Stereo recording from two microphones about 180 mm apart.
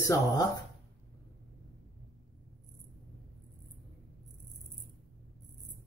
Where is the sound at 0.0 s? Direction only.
20° left (ahead or behind).